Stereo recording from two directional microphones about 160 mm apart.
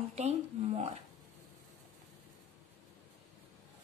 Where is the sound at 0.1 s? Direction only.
45° right (ahead or behind).